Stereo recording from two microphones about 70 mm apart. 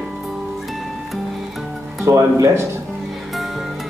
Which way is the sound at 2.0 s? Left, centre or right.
Right.